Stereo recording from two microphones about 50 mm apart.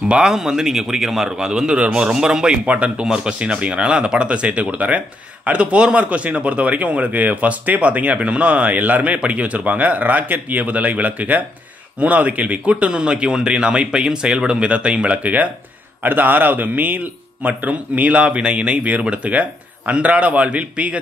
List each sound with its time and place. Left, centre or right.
0.1 s a man's voice: centre; by 15.5 s right
16.0 s speech: right